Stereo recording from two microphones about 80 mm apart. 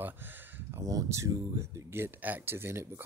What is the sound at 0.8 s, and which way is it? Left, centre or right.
Speech, right.